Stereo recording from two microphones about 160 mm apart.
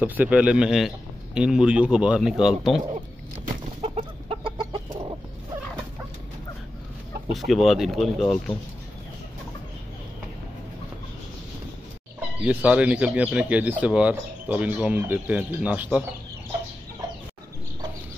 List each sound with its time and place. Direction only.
0.0 s speech: 10° right (ahead or behind)
3.8 s chicken: 40° right (ahead or behind)
7.3 s speech: centre (ahead or behind)
12.4 s speech: 10° right (ahead or behind)